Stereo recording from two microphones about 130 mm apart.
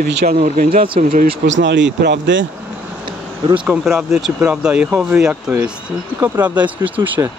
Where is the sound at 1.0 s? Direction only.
75° right (ahead or behind).